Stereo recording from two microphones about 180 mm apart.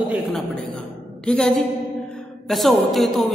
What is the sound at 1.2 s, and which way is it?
A man's voice, 5° left (ahead or behind).